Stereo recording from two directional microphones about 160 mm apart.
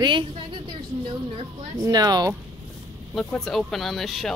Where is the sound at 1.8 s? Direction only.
25° right (ahead or behind).